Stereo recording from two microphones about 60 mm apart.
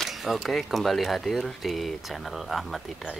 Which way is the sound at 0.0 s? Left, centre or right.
Centre.